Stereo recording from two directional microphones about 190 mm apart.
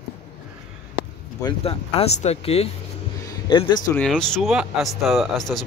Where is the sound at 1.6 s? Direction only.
30° left (ahead or behind).